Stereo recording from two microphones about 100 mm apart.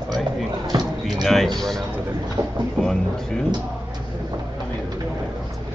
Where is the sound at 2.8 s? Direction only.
5° left (ahead or behind).